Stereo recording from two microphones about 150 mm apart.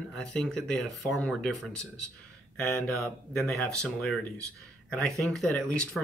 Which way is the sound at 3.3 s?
Centre (ahead or behind).